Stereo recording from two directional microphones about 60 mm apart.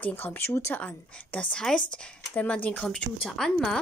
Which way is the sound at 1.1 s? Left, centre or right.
Left.